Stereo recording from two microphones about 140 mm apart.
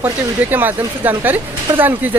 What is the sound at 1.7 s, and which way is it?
Speech, 25° right (ahead or behind).